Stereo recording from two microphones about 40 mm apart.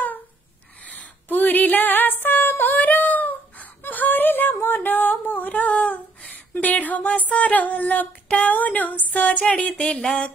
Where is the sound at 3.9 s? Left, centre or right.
Left.